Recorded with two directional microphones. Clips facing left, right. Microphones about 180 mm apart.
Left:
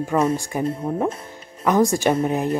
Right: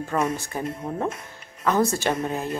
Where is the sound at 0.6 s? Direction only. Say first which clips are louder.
Left 6 dB; 30° left (ahead or behind).